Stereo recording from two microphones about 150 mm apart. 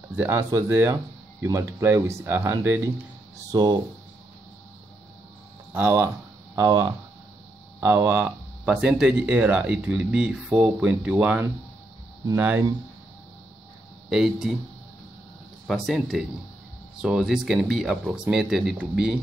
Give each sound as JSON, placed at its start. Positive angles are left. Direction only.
{"t": 0.1, "sound": "speech", "side_deg": -15}
{"t": 3.5, "sound": "speech", "side_deg": -30}
{"t": 5.7, "sound": "speech", "side_deg": -15}
{"t": 6.5, "sound": "speech", "side_deg": -25}
{"t": 8.6, "sound": "speech", "side_deg": -5}
{"t": 14.0, "sound": "speech", "side_deg": -5}
{"t": 15.6, "sound": "speech", "side_deg": 0}